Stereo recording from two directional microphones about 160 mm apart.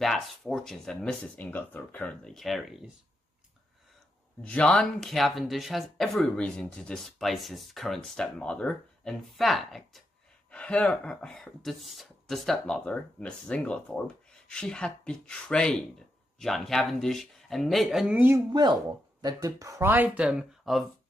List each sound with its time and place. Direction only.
0.0 s speech: centre (ahead or behind)
4.4 s speech: 5° left (ahead or behind); by 18.4 s 10° right (ahead or behind)
18.5 s speech: 25° right (ahead or behind); by 20.8 s centre (ahead or behind)